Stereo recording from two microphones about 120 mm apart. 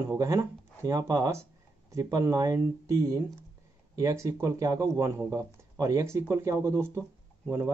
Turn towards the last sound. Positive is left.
turn(degrees=-20)  # may be behind; listen again after turning